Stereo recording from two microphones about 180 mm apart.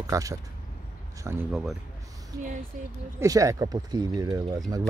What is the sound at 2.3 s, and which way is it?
Speech, 20° right (ahead or behind).